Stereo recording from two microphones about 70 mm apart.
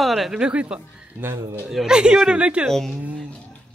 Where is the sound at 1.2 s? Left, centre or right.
Right.